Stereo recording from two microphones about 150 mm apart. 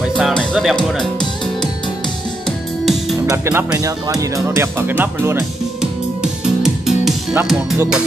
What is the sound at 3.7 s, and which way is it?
Speech, 20° right (ahead or behind).